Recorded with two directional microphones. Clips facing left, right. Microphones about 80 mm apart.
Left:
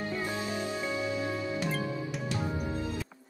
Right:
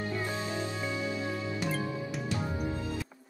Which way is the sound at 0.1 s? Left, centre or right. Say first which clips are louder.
Even; centre.